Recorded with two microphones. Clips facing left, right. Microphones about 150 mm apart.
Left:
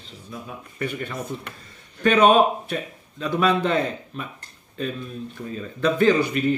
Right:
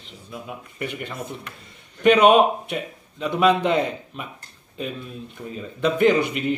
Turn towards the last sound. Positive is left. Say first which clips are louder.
# even
turn(degrees=-20)  # may be behind; listen again after turning